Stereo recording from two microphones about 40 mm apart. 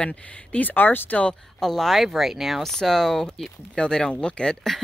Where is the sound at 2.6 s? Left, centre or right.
Centre.